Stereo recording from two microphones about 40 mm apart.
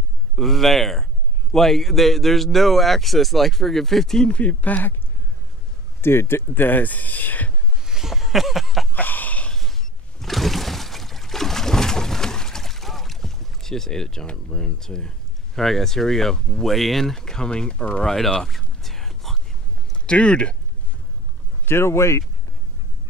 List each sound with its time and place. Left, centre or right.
0.4 s speech: centre
4.3 s speech: left
5.9 s speech: left
7.8 s a sound: centre
8.9 s a sound: left
10.2 s a sound: centre
15.5 s speech: centre; by 18.0 s left
18.0 s speech: centre
18.8 s whispering: centre
20.1 s speech: left
21.6 s speech: left